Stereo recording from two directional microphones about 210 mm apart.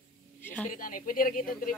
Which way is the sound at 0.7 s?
40° left (ahead or behind).